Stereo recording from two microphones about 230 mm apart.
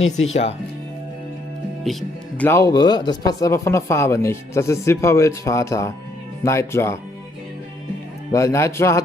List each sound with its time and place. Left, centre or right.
0.3 s speech: left
1.9 s speech: centre
8.3 s speech: centre